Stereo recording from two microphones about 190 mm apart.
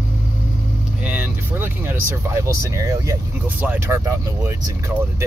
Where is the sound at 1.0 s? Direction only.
10° right (ahead or behind).